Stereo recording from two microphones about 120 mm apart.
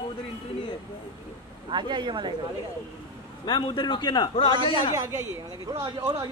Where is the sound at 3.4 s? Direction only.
40° left (ahead or behind).